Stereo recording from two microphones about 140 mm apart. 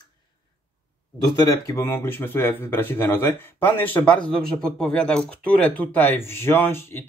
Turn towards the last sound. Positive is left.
turn(degrees=15)  # may be behind; listen again after turning